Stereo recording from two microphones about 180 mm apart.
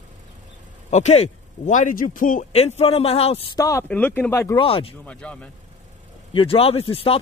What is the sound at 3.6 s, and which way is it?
Speech, 15° left (ahead or behind).